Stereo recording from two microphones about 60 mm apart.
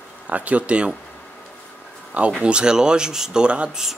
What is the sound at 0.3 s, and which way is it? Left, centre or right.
Speech, right.